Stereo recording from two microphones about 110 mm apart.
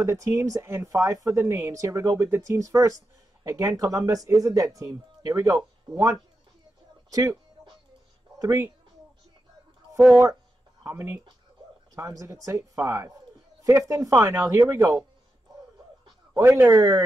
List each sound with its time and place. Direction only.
0.0 s speech: 25° right (ahead or behind)
7.1 s speech: 30° right (ahead or behind)
8.4 s speech: 25° right (ahead or behind)
10.8 s speech: 20° right (ahead or behind)
16.3 s speech: 15° right (ahead or behind)
16.7 s speech: 30° right (ahead or behind)